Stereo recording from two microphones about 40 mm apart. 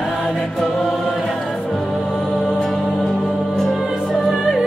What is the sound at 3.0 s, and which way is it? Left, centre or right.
Music, centre.